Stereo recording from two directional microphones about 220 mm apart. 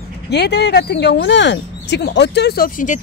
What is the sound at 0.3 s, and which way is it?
Speech, 50° left (ahead or behind).